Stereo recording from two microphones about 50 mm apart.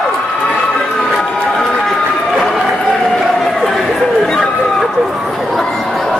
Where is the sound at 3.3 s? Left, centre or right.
Centre.